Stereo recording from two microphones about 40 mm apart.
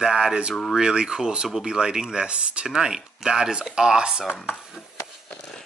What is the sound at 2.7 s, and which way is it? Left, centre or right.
Speech, centre.